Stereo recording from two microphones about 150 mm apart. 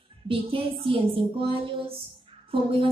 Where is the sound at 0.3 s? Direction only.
35° right (ahead or behind).